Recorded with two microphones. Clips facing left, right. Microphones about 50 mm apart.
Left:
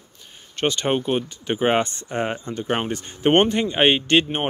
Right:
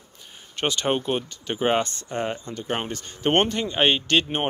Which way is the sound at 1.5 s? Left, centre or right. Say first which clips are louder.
Left 3 dB; centre.